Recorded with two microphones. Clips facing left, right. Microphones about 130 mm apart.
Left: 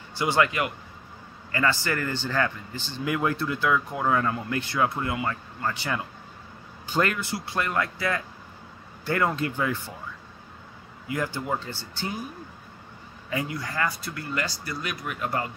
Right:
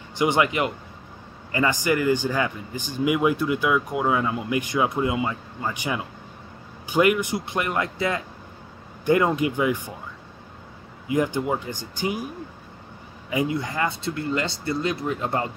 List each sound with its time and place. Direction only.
0.1 s speech: 20° right (ahead or behind)
11.1 s speech: 20° right (ahead or behind)
13.3 s speech: 20° right (ahead or behind)